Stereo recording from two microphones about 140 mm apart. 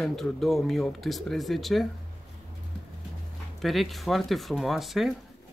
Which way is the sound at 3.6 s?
Centre (ahead or behind).